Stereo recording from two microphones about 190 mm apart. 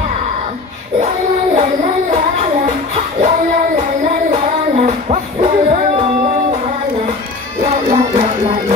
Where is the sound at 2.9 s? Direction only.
35° right (ahead or behind).